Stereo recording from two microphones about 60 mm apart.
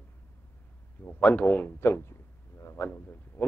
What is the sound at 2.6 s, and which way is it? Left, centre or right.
Frog, left.